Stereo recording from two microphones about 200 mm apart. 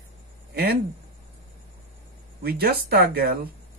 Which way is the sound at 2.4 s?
50° right (ahead or behind).